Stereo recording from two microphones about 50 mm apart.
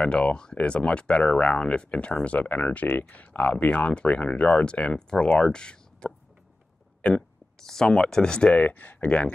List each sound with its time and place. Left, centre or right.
0.0 s speech: left
7.0 s a sound: left
7.6 s speech: centre
8.5 s speech: left